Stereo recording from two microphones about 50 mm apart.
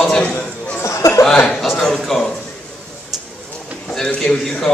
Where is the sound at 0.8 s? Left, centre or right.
Left.